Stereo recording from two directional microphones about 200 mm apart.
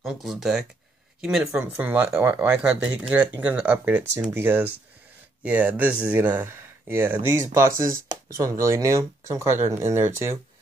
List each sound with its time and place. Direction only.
0.0 s speech: centre (ahead or behind)
7.7 s speech: 45° right (ahead or behind)
8.4 s speech: 15° right (ahead or behind)